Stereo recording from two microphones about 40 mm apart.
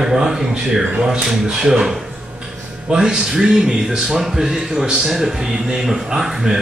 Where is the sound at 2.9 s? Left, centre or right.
Centre.